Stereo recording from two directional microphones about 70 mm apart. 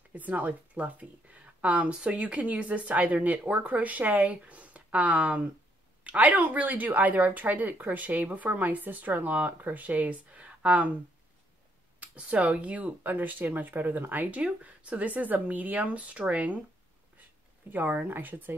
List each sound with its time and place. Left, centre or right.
0.1 s speech: right
12.2 s speech: centre